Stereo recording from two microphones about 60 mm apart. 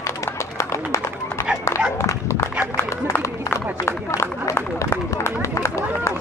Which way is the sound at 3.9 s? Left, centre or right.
Left.